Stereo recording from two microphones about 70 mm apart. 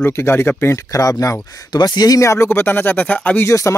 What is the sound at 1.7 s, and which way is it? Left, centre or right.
Speech, left.